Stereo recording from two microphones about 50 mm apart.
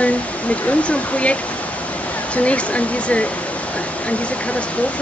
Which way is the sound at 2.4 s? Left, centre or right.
Left.